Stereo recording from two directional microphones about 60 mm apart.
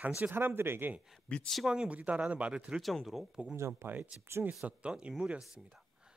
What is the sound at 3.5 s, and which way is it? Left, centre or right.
Speech, right.